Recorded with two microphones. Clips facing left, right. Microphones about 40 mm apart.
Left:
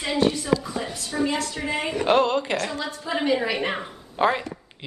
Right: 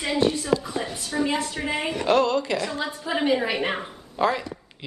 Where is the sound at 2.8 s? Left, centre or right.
Centre.